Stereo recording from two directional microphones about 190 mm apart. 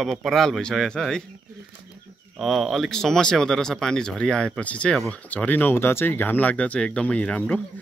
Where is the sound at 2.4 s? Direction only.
Centre (ahead or behind).